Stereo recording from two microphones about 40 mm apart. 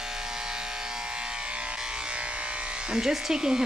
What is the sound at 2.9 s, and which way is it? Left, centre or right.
Speech, centre.